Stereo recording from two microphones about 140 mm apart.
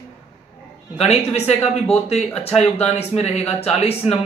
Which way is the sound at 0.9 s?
50° left (ahead or behind).